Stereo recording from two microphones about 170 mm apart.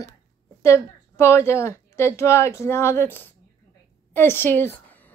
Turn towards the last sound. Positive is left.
turn(degrees=10)  # may be behind; listen again after turning